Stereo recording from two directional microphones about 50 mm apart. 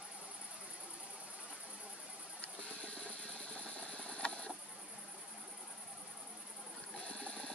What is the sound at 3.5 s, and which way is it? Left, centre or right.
Vehicle, left.